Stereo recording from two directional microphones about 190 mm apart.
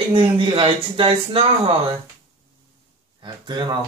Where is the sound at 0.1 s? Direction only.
30° right (ahead or behind).